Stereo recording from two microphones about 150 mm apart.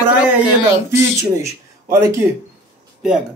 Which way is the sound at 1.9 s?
20° right (ahead or behind).